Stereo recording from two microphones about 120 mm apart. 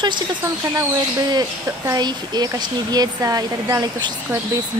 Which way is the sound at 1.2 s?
35° right (ahead or behind).